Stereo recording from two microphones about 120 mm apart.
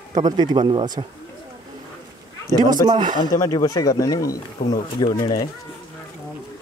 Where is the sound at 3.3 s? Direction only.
25° left (ahead or behind).